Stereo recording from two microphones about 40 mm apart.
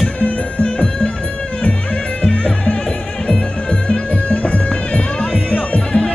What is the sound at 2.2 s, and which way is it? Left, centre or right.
Music, left.